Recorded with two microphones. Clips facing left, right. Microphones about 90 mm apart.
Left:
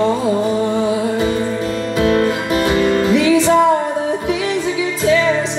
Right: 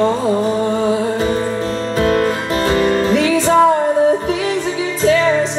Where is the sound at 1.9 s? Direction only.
40° right (ahead or behind).